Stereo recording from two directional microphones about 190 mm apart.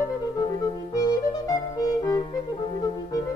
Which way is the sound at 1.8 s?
20° left (ahead or behind).